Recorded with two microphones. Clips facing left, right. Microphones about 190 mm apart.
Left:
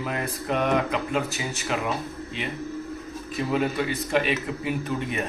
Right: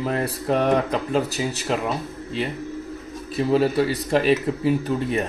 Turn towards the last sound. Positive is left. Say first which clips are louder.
# right 6 dB
turn(degrees=-35)  # may be behind; listen again after turning